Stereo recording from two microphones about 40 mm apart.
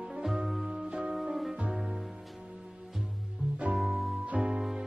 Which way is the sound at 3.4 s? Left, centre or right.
Right.